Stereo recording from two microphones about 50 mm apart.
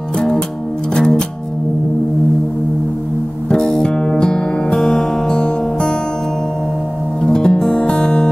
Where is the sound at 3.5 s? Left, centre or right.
Centre.